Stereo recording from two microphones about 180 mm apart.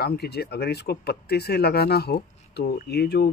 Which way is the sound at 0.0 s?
60° left (ahead or behind).